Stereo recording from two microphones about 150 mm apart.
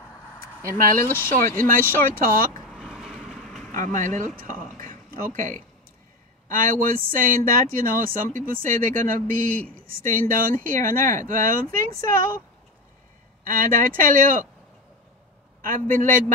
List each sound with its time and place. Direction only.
0.7 s speech: 65° right (ahead or behind)
1.0 s speech: 15° left (ahead or behind)
1.6 s speech: 70° right (ahead or behind)
2.7 s vehicle: 5° right (ahead or behind)
3.8 s speech: 55° right (ahead or behind)
4.4 s a sound: 65° right (ahead or behind)
6.5 s speech: 65° right (ahead or behind)
13.4 s speech: 70° right (ahead or behind)
15.6 s speech: 65° right (ahead or behind)